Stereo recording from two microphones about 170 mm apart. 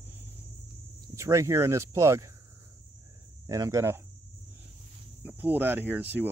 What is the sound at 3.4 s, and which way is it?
Speech, 20° right (ahead or behind).